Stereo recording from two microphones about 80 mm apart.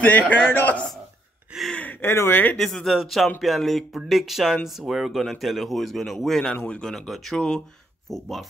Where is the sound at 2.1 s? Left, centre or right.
Left.